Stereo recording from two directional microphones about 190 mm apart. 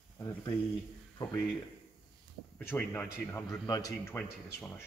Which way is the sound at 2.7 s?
10° left (ahead or behind).